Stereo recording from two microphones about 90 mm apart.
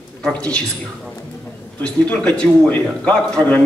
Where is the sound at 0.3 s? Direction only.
10° left (ahead or behind).